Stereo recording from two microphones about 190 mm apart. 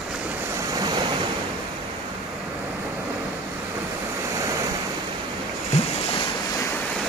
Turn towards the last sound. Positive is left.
turn(degrees=35)  # may be behind; listen again after turning